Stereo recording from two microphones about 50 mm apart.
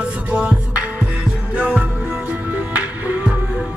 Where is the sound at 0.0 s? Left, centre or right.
Right.